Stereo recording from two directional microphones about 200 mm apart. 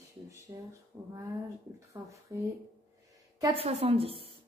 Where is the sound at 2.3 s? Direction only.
15° right (ahead or behind).